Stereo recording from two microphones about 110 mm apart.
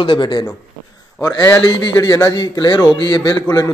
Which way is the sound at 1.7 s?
35° left (ahead or behind).